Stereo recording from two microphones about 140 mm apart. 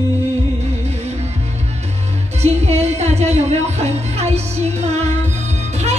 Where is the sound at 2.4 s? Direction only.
50° right (ahead or behind).